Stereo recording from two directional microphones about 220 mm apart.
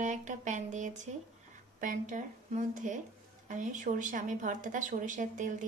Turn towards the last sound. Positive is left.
turn(degrees=-35)  # may be behind; listen again after turning